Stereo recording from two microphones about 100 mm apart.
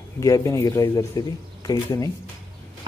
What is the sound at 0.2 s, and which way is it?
Speech, 35° left (ahead or behind).